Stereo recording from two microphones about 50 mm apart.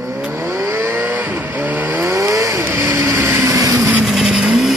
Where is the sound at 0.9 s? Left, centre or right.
Right.